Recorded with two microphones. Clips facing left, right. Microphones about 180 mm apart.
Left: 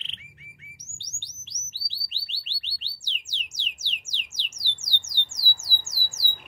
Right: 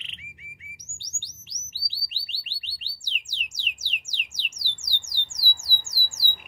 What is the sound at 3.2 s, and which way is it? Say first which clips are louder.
Music: right 2 dB; 10° right (ahead or behind).